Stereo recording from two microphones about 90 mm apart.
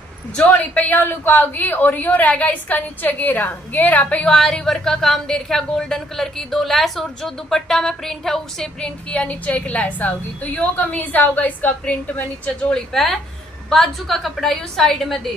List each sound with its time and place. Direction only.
0.4 s a woman's voice: 15° left (ahead or behind)